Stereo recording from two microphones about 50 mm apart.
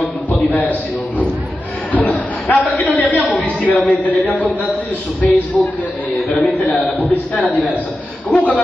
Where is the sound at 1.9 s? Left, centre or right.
Left.